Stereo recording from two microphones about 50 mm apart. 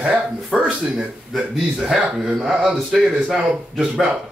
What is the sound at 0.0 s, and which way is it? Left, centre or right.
Speech, right.